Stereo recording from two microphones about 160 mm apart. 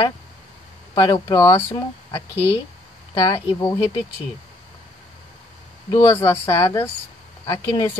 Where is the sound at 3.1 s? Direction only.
20° left (ahead or behind).